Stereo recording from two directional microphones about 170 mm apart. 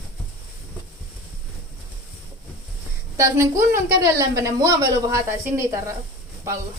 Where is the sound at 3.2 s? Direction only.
15° right (ahead or behind).